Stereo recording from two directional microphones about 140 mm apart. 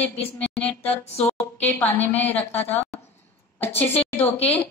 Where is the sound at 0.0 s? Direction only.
10° left (ahead or behind).